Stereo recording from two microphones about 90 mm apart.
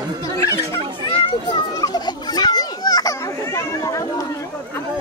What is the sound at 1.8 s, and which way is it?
Children playing, 45° left (ahead or behind).